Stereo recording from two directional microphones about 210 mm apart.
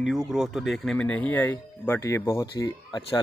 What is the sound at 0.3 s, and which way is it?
Speech, centre (ahead or behind).